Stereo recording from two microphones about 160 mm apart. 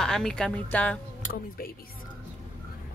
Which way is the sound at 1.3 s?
70° left (ahead or behind).